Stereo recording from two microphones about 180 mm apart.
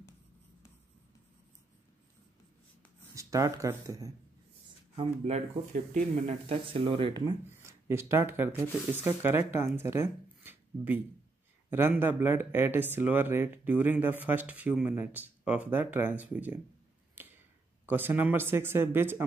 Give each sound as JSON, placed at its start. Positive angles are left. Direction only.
{"t": 3.2, "sound": "speech", "side_deg": -20}
{"t": 4.9, "sound": "speech", "side_deg": -35}
{"t": 6.5, "sound": "speech", "side_deg": -30}
{"t": 7.5, "sound": "speech", "side_deg": -15}
{"t": 17.8, "sound": "speech", "side_deg": -10}